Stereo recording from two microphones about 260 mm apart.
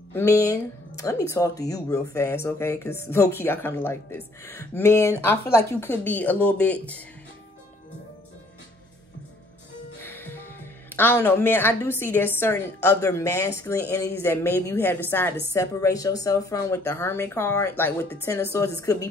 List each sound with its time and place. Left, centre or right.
0.4 s speech: centre
10.0 s speech: centre